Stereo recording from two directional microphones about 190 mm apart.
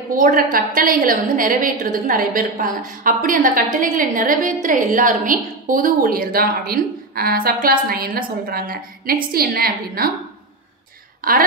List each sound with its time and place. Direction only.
0.1 s a woman's voice: 45° right (ahead or behind)
11.2 s a woman's voice: 50° right (ahead or behind)